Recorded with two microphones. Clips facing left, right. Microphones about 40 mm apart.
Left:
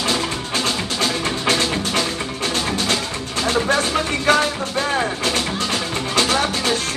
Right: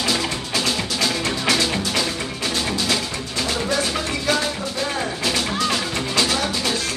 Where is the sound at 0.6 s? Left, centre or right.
Left.